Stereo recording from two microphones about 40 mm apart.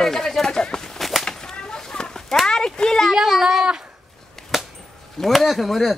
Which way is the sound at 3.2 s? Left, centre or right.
Centre.